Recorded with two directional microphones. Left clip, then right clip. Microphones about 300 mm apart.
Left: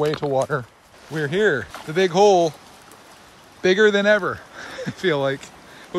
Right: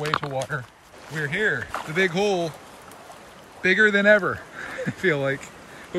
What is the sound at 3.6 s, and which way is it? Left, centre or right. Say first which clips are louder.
Speech: left 1 dB; centre.